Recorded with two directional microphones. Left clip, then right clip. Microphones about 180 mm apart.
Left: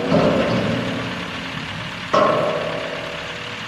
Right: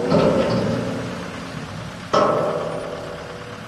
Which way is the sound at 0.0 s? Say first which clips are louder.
Even; 25° right (ahead or behind).